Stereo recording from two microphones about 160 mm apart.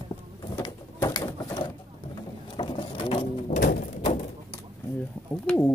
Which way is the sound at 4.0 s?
40° left (ahead or behind).